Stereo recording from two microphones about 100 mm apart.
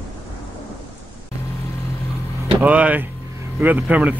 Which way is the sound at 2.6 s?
15° right (ahead or behind).